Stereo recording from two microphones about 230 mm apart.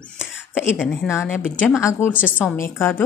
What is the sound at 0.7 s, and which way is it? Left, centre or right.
Speech, centre.